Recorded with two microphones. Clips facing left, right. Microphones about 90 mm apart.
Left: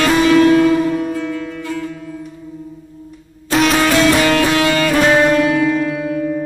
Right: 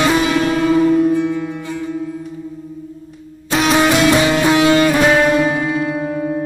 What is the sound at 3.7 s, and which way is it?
Music, 20° right (ahead or behind).